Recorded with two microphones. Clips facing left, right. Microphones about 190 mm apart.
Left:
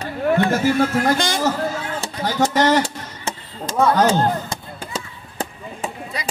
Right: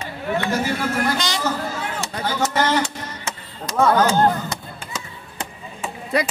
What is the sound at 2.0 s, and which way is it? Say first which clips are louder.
Music: left 3 dB; 35° left (ahead or behind).